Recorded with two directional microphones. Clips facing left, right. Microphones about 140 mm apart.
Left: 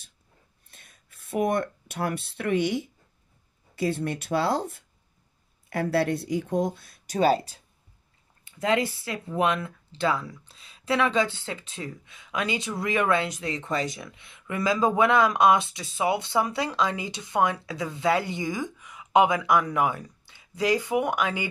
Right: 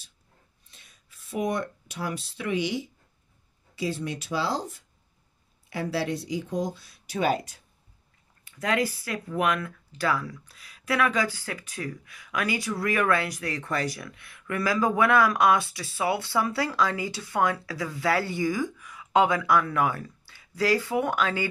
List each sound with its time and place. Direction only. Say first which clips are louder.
0.7 s speech: left 3 dB; 55° left (ahead or behind)
7.2 s speech: left 4 dB; 35° left (ahead or behind); by 21.5 s 15° left (ahead or behind)